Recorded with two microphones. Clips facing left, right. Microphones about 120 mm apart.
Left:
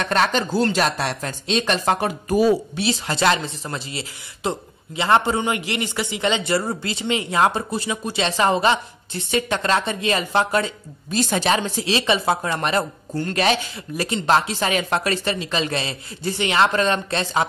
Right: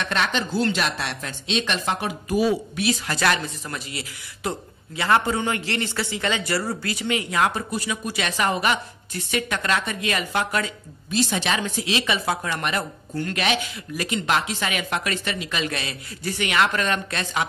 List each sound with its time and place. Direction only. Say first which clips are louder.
0.0 s speech: left 5 dB; 40° left (ahead or behind)
2.8 s speech: left 2 dB; 25° left (ahead or behind)
11.1 s speech: left 3 dB; 45° left (ahead or behind)